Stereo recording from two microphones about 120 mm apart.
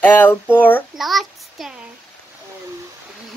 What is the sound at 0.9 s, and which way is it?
Speech, centre (ahead or behind).